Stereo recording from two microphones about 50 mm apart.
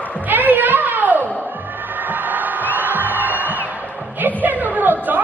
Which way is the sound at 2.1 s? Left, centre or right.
Right.